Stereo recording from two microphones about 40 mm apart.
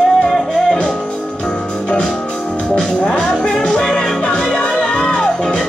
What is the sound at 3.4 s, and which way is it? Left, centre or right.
Music, centre.